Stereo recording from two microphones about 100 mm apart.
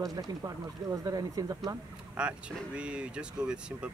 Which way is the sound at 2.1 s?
10° right (ahead or behind).